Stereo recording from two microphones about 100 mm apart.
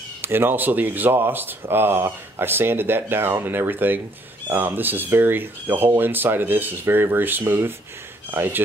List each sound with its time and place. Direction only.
0.2 s speech: 20° right (ahead or behind)